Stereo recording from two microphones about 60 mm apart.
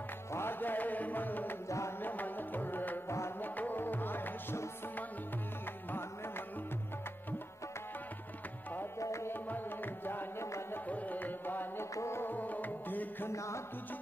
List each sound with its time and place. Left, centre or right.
0.3 s music: left
9.0 s music: left
10.4 s music: left
10.9 s music: left
11.9 s music: left
12.2 s music: left
13.3 s music: left